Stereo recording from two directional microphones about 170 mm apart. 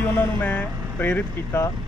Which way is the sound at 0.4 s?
10° left (ahead or behind).